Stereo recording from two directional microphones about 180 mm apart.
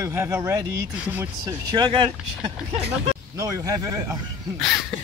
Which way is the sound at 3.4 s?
15° right (ahead or behind).